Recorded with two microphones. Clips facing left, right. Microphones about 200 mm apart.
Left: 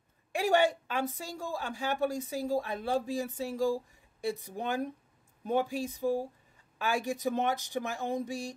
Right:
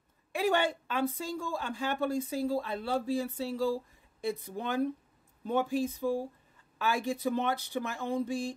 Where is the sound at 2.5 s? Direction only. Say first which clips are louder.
Left 1 dB; 15° left (ahead or behind).